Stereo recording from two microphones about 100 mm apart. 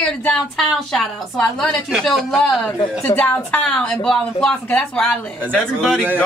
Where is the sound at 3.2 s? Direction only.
15° left (ahead or behind).